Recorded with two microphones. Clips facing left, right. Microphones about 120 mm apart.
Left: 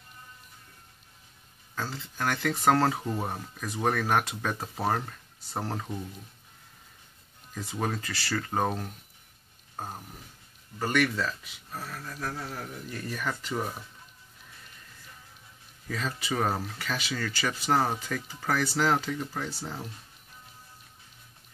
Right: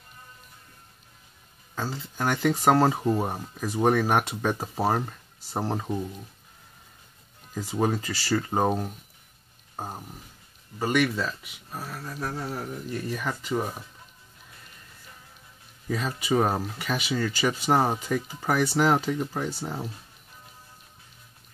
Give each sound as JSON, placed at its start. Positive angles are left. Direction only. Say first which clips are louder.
{"t": 1.8, "sound": "speech", "louder": "right 3 dB", "side_deg": -20}
{"t": 7.8, "sound": "speech", "louder": "right 6 dB", "side_deg": -20}
{"t": 10.8, "sound": "speech", "louder": "right 2 dB", "side_deg": -10}
{"t": 15.9, "sound": "speech", "louder": "right 6 dB", "side_deg": -20}